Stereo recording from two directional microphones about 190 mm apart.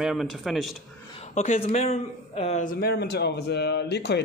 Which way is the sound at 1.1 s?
35° left (ahead or behind).